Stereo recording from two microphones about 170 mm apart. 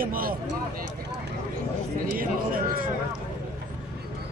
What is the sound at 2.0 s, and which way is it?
Speech, 55° right (ahead or behind).